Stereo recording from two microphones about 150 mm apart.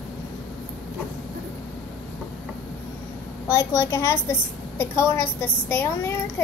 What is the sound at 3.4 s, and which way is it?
A woman's voice, 20° left (ahead or behind).